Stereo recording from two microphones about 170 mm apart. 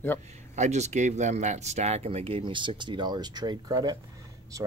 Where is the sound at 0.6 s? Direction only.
45° right (ahead or behind).